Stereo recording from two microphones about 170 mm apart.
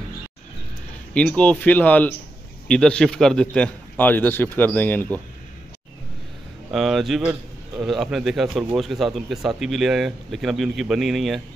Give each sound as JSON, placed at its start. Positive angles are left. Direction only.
{"t": 1.1, "sound": "a man's voice", "side_deg": 5}
{"t": 6.7, "sound": "a man's voice", "side_deg": 0}